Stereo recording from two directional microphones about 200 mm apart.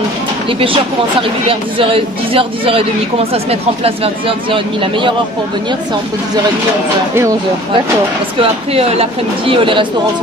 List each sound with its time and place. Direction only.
0.5 s speech: 25° right (ahead or behind)
8.4 s speech: 30° right (ahead or behind)